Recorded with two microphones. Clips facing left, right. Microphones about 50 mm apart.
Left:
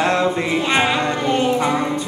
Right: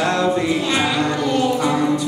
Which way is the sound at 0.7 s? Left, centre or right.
Left.